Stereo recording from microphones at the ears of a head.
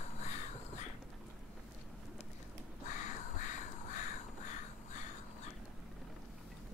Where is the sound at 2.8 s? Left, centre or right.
Left.